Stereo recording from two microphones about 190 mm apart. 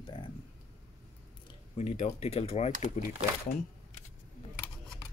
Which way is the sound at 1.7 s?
35° left (ahead or behind).